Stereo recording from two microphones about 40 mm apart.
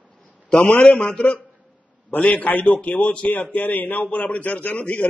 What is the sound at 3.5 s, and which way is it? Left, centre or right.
A man's voice, left.